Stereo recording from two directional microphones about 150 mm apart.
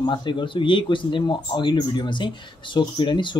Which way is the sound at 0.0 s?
30° left (ahead or behind).